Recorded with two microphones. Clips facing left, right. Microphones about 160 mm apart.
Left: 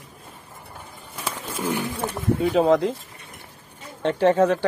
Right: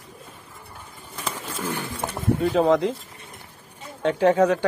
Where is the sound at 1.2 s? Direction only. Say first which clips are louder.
Left 2 dB; 15° left (ahead or behind).